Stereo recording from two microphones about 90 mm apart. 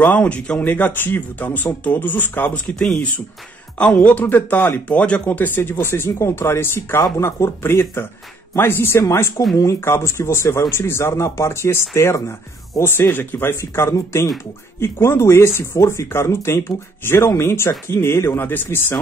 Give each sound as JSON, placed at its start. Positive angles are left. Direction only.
{"t": 0.0, "sound": "speech", "side_deg": 15}
{"t": 2.7, "sound": "speech", "side_deg": 10}